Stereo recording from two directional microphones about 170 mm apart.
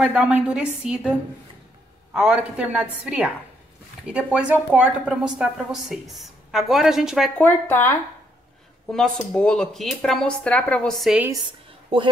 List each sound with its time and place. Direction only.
0.0 s a woman's voice: 5° right (ahead or behind)
2.1 s a woman's voice: 5° right (ahead or behind)
7.3 s speech: 10° left (ahead or behind)
8.9 s a woman's voice: 5° left (ahead or behind)
11.4 s a sound: 30° right (ahead or behind)